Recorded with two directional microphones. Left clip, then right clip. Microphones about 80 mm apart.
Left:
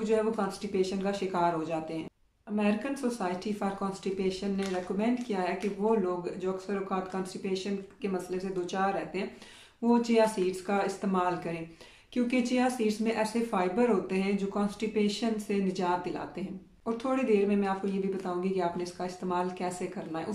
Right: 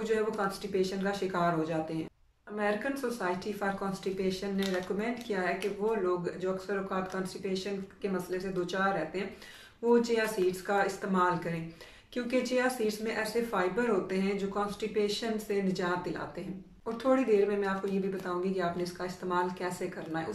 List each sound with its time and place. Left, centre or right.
0.0 s speech: left